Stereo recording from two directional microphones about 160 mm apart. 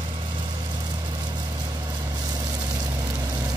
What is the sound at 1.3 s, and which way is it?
Vehicle, 25° right (ahead or behind).